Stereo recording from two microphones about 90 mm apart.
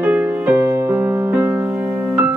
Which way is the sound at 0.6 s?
35° right (ahead or behind).